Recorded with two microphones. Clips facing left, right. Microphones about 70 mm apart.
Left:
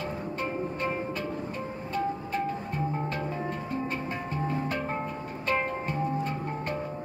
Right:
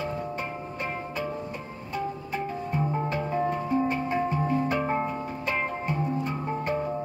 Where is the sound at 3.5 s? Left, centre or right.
Centre.